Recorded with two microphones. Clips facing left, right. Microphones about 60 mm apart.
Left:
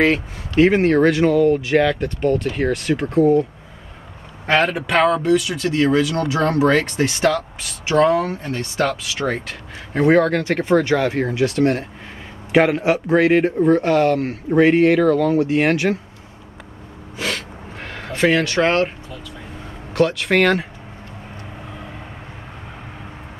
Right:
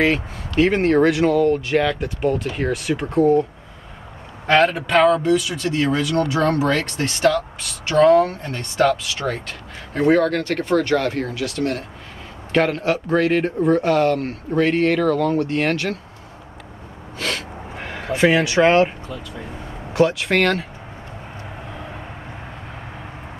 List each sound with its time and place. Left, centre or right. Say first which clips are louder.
0.0 s speech: left 2 dB; centre
4.5 s speech: right 1 dB; centre; by 11.8 s left
12.5 s speech: left 3 dB; centre
13.6 s speech: left 2 dB; centre
14.5 s speech: left 4 dB; centre
17.4 s a sound: right 2 dB; centre
19.9 s speech: even; centre